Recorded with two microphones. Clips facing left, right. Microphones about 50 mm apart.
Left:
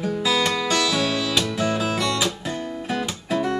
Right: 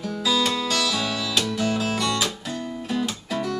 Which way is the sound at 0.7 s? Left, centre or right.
Centre.